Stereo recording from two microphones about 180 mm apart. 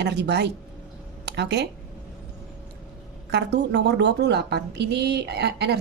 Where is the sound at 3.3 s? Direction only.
70° right (ahead or behind).